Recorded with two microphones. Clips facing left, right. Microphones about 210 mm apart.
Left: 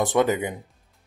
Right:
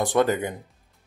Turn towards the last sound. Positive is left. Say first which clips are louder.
# even
turn(degrees=15)  # may be behind; listen again after turning